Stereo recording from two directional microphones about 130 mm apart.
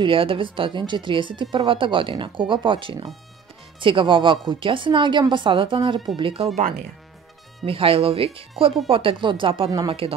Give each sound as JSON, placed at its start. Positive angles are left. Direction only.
{"t": 0.0, "sound": "speech", "side_deg": -45}
{"t": 7.6, "sound": "speech", "side_deg": -45}